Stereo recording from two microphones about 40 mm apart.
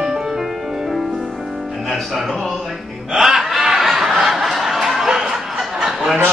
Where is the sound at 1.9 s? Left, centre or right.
Centre.